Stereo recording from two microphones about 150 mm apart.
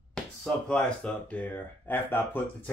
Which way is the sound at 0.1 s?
5° left (ahead or behind).